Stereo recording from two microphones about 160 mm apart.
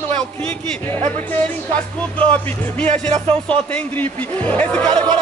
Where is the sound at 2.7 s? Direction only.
10° left (ahead or behind).